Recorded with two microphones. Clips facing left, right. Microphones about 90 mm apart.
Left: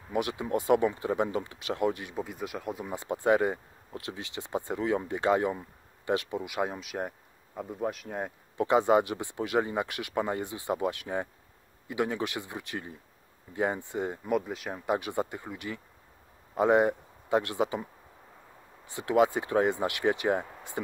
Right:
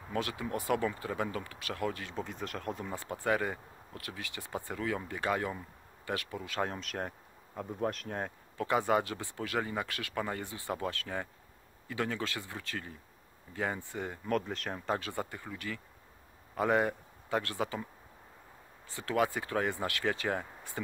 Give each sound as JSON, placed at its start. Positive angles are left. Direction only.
{"t": 0.1, "sound": "speech", "side_deg": 20}
{"t": 8.5, "sound": "speech", "side_deg": 20}
{"t": 18.9, "sound": "speech", "side_deg": 20}